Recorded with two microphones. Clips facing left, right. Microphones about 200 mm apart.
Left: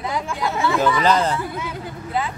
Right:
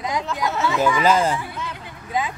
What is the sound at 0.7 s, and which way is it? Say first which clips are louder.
Speech: even; 10° right (ahead or behind).